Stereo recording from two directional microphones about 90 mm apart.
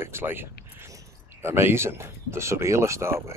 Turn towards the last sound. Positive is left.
turn(degrees=-30)  # may be behind; listen again after turning